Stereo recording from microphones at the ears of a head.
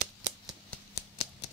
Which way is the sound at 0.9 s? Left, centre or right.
Left.